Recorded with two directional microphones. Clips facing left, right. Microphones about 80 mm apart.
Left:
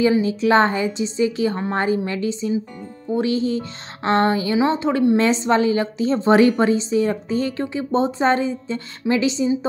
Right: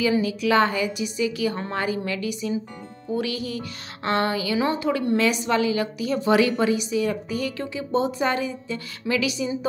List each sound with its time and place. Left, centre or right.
0.0 s speech: left